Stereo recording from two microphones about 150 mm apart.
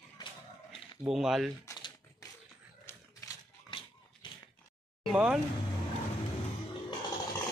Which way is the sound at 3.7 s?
35° left (ahead or behind).